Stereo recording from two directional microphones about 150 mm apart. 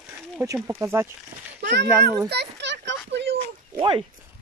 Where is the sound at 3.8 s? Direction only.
35° right (ahead or behind).